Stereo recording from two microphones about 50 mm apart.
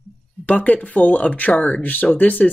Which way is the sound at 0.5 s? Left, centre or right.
Left.